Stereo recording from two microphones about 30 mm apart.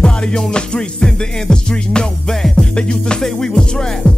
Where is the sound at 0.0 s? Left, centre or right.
Left.